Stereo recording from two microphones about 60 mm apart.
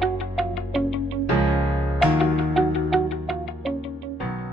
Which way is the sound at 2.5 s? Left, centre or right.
Centre.